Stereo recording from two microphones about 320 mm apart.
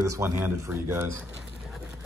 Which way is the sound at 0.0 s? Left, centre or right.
Centre.